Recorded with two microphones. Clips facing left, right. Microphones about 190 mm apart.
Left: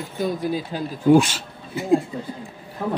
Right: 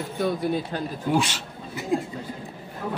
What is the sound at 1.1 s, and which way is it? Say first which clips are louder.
Speech: left 9 dB; 45° left (ahead or behind).